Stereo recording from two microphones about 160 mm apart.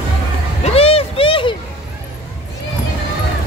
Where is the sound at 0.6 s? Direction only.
40° left (ahead or behind).